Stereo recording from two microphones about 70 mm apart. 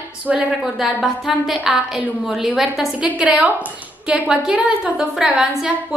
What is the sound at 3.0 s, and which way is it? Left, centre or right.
A woman's voice, centre.